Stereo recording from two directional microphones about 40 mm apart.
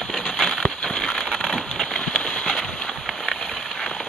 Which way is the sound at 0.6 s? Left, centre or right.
Left.